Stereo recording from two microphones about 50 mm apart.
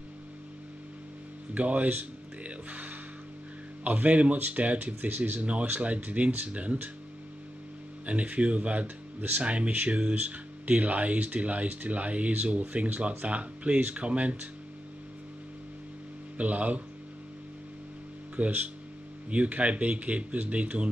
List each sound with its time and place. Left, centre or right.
1.5 s speech: right
8.1 s speech: right
16.3 s speech: right
18.4 s speech: right